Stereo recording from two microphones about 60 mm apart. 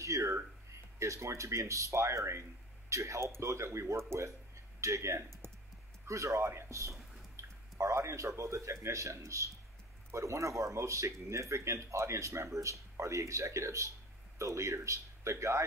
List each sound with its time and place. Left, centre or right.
0.0 s a sound: right
0.9 s speech: right
6.0 s speech: right